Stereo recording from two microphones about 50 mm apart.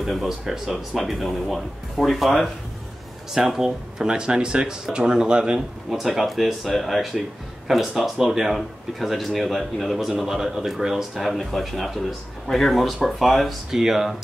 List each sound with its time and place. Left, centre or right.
0.0 s speech: centre
5.9 s speech: centre